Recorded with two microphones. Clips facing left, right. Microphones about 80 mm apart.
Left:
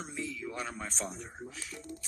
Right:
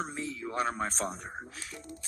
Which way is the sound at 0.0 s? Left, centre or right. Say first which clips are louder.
Right 3 dB; right.